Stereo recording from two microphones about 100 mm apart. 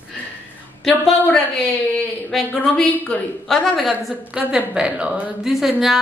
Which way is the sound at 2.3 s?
5° left (ahead or behind).